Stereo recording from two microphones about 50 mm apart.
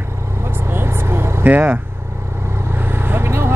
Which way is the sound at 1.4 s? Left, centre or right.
Right.